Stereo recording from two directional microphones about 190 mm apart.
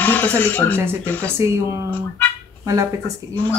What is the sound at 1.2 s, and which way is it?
Speech, 15° right (ahead or behind).